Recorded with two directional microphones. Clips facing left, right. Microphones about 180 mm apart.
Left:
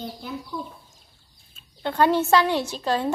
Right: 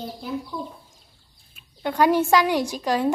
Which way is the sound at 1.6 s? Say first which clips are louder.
Even; 10° right (ahead or behind).